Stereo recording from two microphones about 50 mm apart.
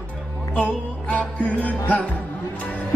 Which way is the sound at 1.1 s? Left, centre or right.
Left.